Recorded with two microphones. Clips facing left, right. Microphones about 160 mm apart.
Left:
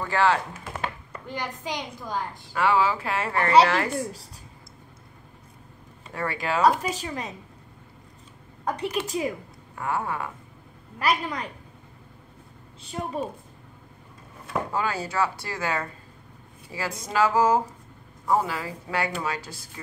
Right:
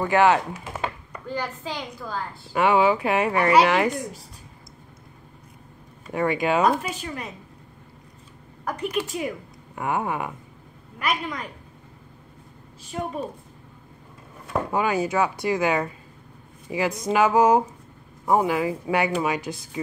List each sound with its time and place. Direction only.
0.0 s speech: 15° right (ahead or behind)
1.2 s a woman's voice: 15° left (ahead or behind)
2.5 s speech: 20° right (ahead or behind)
6.1 s speech: 20° right (ahead or behind)
6.6 s speech: 35° left (ahead or behind)
8.6 s a woman's voice: 30° left (ahead or behind)
9.8 s speech: 20° right (ahead or behind)
11.0 s speech: 35° left (ahead or behind)
14.7 s speech: 15° right (ahead or behind)